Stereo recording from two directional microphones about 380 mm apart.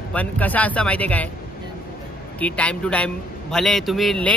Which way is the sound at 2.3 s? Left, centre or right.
Centre.